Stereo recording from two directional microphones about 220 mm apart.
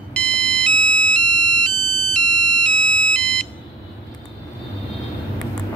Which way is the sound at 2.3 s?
90° right.